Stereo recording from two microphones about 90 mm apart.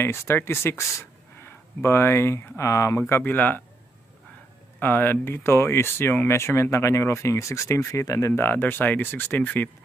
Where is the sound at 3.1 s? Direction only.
20° left (ahead or behind).